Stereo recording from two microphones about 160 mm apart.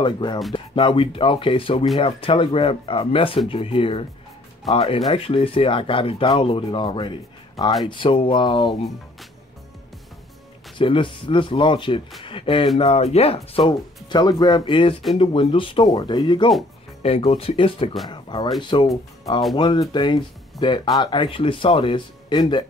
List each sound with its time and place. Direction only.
0.0 s speech: 25° left (ahead or behind)
10.8 s speech: 30° left (ahead or behind)